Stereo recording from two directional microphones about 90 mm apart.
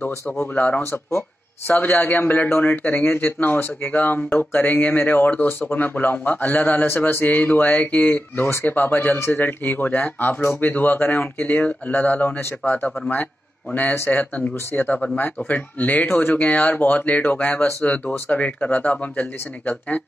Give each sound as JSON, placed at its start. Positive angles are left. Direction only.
{"t": 0.0, "sound": "a man's voice", "side_deg": 20}